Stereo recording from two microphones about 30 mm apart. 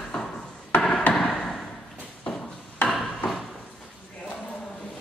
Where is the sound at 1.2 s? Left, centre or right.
Centre.